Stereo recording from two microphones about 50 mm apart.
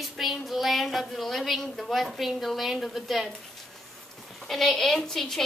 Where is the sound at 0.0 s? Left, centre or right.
Centre.